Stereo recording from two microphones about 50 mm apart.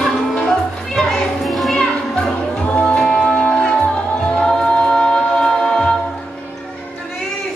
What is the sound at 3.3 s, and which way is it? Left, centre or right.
Music, left.